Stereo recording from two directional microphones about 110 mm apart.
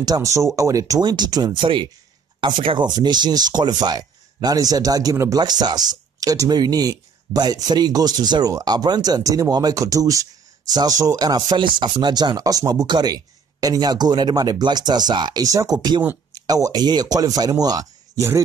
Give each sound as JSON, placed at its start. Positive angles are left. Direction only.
{"t": 0.0, "sound": "speech", "side_deg": -35}